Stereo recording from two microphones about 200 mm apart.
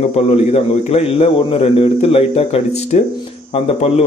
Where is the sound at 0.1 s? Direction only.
30° left (ahead or behind).